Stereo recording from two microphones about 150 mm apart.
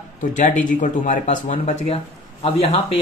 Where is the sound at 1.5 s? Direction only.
40° left (ahead or behind).